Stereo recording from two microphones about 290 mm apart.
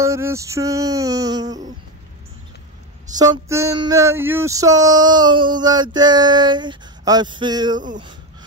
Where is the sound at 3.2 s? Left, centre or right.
Centre.